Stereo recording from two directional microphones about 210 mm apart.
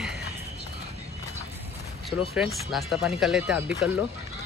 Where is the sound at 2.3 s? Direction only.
Centre (ahead or behind).